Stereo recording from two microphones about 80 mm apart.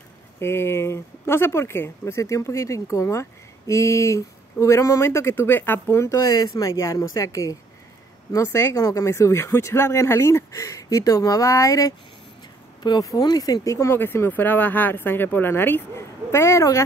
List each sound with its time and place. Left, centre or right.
0.4 s speech: left
6.8 s speech: left
13.0 s speech: left
16.3 s speech: left